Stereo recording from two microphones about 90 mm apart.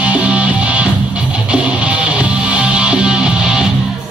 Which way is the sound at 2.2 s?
10° right (ahead or behind).